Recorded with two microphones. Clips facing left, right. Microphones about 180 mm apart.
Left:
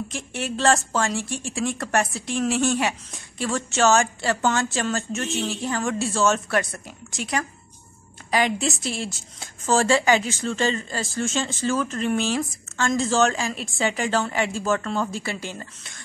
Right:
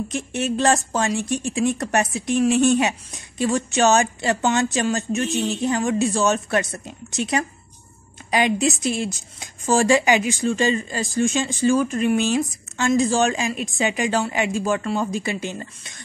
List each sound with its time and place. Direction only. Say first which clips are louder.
0.1 s a woman's voice: right 6 dB; 20° right (ahead or behind)